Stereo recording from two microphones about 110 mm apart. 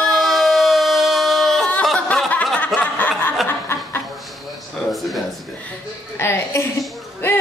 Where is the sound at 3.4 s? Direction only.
20° left (ahead or behind).